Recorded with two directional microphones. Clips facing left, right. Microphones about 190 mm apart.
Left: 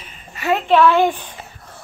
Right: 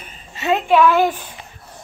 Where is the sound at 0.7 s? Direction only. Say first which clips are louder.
Left 1 dB; 10° right (ahead or behind).